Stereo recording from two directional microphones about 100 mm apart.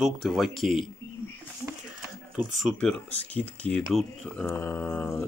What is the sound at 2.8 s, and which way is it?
Speech, 10° left (ahead or behind).